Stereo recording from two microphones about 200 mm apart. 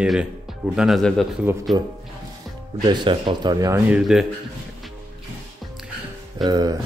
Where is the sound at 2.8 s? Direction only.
25° right (ahead or behind); by 4.2 s 5° right (ahead or behind).